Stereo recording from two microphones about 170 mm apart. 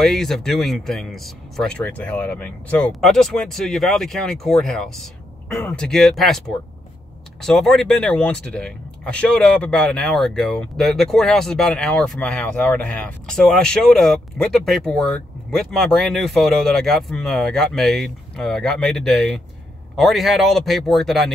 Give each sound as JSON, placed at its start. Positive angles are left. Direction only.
{"t": 0.0, "sound": "speech", "side_deg": 0}